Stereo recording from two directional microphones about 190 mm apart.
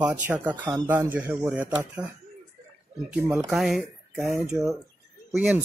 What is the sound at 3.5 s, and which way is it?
Speech, centre (ahead or behind).